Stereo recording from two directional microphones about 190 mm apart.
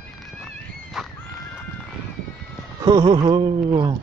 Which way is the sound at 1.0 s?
Centre (ahead or behind).